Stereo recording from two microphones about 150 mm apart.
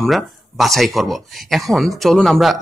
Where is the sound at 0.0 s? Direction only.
Centre (ahead or behind).